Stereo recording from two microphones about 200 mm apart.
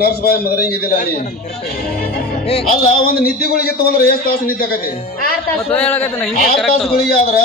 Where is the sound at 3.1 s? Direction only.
50° left (ahead or behind).